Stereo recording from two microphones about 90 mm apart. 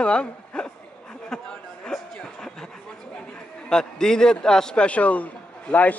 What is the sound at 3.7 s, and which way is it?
A man's voice, 5° left (ahead or behind).